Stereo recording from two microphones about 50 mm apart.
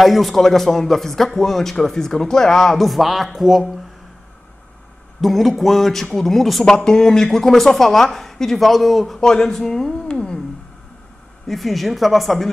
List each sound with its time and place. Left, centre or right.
0.0 s speech: centre
5.2 s speech: centre
6.6 s a woman's voice: centre
9.2 s a woman's voice: centre
10.0 s a sound: centre
11.4 s speech: centre